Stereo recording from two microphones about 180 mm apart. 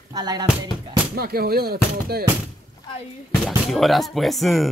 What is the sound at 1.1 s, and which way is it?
Speech, 60° right (ahead or behind).